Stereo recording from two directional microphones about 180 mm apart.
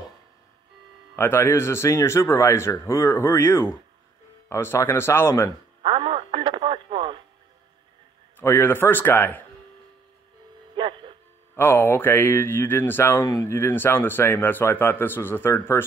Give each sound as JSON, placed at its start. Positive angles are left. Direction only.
{"t": 1.1, "sound": "speech", "side_deg": 10}
{"t": 5.8, "sound": "radio", "side_deg": -30}
{"t": 8.4, "sound": "speech", "side_deg": 10}
{"t": 10.7, "sound": "music", "side_deg": -25}
{"t": 11.5, "sound": "speech", "side_deg": 15}